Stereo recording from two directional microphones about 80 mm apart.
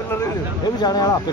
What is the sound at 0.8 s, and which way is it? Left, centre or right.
Speech, left.